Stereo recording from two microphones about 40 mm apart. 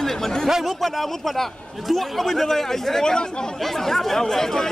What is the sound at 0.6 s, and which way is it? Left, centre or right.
Speech, centre.